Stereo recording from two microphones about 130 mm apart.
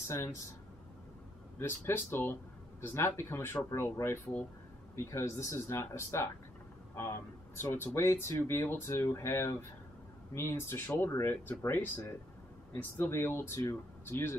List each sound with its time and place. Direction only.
0.1 s speech: 20° left (ahead or behind)
1.6 s speech: 15° left (ahead or behind)